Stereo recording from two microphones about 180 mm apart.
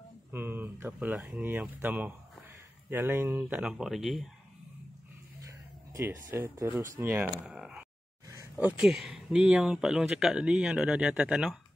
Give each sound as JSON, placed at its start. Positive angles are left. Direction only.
{"t": 0.3, "sound": "speech", "side_deg": -10}
{"t": 5.9, "sound": "speech", "side_deg": -10}